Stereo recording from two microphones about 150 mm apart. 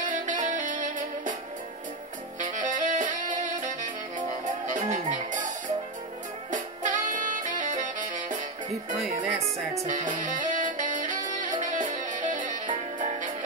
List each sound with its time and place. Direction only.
0.1 s music: 60° right (ahead or behind)
2.4 s saxophone: 60° right (ahead or behind)
4.6 s music: 60° right (ahead or behind)
6.5 s music: 60° right (ahead or behind)
9.8 s music: 60° right (ahead or behind)